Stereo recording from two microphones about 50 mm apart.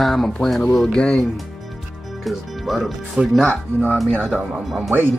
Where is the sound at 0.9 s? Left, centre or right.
Centre.